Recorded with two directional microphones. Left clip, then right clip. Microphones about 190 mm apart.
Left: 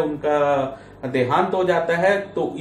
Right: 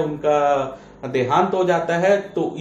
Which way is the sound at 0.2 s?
15° right (ahead or behind).